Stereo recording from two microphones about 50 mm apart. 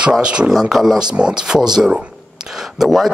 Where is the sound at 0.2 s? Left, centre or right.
Centre.